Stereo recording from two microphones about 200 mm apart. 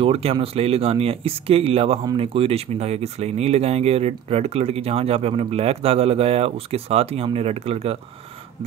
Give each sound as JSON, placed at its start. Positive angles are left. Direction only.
{"t": 0.0, "sound": "speech", "side_deg": -30}